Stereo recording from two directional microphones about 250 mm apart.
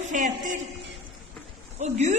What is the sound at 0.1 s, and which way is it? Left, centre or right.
Speech, right.